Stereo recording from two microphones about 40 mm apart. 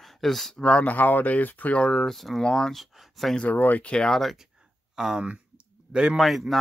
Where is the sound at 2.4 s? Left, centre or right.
Centre.